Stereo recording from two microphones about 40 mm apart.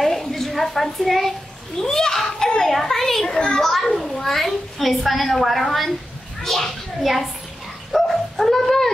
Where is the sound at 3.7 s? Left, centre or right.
Centre.